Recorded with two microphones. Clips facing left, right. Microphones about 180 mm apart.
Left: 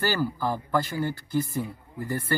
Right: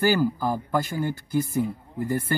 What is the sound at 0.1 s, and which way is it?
Speech, 15° right (ahead or behind).